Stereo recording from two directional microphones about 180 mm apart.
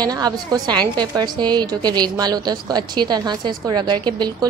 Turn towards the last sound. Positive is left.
turn(degrees=-25)  # may be behind; listen again after turning